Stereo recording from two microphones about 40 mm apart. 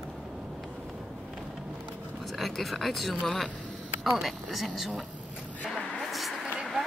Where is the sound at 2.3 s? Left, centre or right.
Centre.